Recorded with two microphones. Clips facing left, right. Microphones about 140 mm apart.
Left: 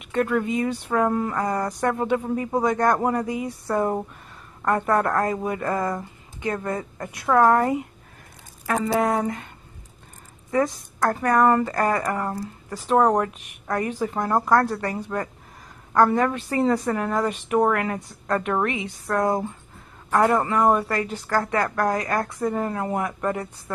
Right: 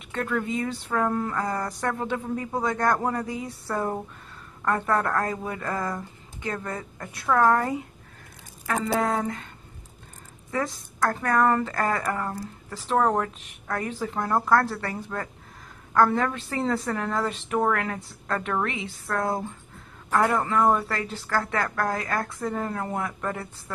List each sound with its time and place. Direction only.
0.0 s a woman's voice: 15° left (ahead or behind)
10.5 s a woman's voice: 15° left (ahead or behind)